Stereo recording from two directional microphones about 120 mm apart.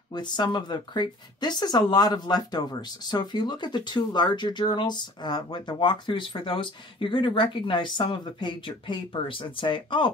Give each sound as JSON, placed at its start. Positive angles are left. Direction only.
{"t": 0.1, "sound": "speech", "side_deg": 40}